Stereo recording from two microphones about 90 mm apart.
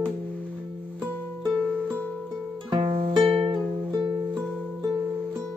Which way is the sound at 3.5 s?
55° right (ahead or behind).